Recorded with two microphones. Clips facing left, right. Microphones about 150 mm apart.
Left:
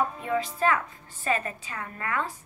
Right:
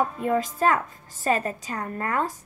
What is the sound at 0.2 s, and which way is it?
A woman's voice, 45° right (ahead or behind).